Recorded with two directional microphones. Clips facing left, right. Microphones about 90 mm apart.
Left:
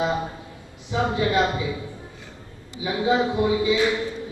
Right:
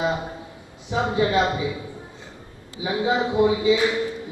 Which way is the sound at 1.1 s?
25° right (ahead or behind).